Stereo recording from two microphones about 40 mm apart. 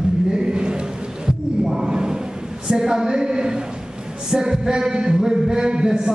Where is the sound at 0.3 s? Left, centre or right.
Right.